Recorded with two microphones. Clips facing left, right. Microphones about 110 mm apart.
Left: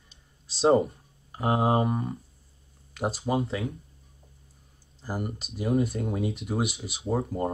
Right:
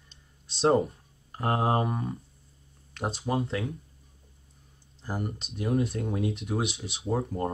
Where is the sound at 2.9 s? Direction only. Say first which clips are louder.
Left 2 dB; 5° left (ahead or behind).